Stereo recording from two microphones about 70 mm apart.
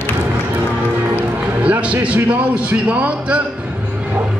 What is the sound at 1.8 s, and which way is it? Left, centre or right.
A man's voice, centre.